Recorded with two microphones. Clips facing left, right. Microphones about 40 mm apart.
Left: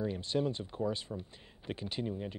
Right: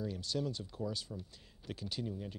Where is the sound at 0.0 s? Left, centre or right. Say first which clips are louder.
Left 5 dB; left.